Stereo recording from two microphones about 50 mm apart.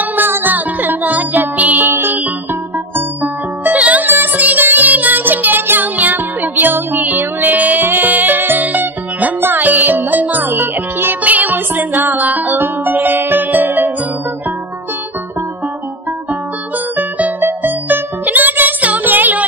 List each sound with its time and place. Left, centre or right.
0.0 s music: right
1.9 s music: right
11.2 s music: right
16.9 s music: right